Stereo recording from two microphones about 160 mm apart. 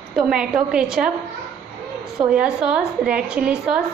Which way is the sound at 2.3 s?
5° right (ahead or behind).